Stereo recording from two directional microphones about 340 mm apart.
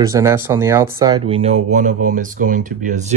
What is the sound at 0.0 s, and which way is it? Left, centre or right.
Speech, centre.